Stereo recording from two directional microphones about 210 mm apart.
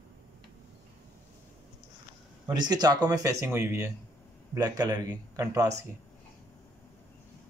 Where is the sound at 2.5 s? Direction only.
20° right (ahead or behind).